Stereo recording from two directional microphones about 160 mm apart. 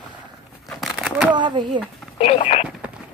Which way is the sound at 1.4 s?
30° right (ahead or behind).